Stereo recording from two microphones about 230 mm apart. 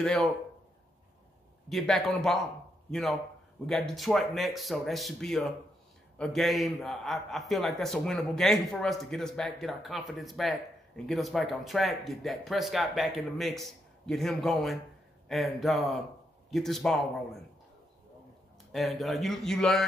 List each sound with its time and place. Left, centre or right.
0.0 s a man's voice: centre
1.7 s a man's voice: centre
18.7 s a man's voice: centre